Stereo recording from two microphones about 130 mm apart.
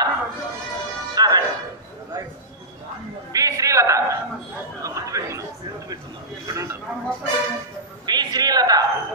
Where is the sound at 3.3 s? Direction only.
25° right (ahead or behind).